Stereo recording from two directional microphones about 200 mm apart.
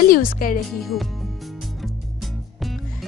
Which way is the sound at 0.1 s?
45° left (ahead or behind).